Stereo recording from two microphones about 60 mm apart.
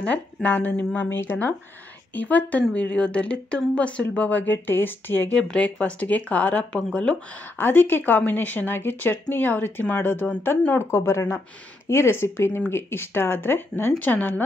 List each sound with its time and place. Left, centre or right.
0.0 s speech: left
2.1 s speech: left
5.6 s speech: left
7.5 s speech: left
10.8 s speech: left